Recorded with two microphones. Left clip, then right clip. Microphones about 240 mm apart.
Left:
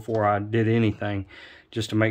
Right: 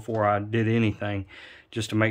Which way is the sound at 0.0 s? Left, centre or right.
Centre.